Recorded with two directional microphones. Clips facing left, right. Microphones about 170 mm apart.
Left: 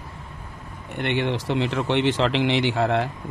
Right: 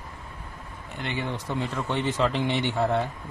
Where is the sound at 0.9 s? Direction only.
65° left (ahead or behind).